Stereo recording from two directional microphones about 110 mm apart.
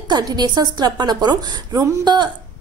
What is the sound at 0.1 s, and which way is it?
A woman's voice, 40° right (ahead or behind).